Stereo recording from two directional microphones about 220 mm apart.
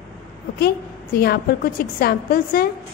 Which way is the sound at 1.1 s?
45° left (ahead or behind).